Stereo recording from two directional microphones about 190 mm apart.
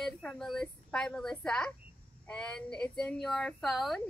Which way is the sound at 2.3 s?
5° left (ahead or behind).